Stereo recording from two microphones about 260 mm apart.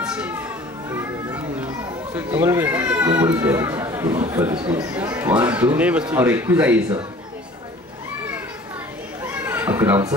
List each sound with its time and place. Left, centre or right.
0.0 s children playing: centre
4.6 s speech: centre
9.2 s children playing: centre